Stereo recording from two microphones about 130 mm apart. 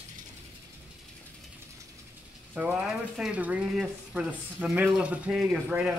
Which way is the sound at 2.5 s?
10° right (ahead or behind).